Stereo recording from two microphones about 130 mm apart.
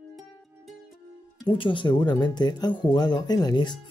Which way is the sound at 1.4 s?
40° left (ahead or behind).